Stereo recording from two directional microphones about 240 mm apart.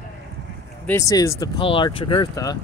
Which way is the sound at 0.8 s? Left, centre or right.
Centre.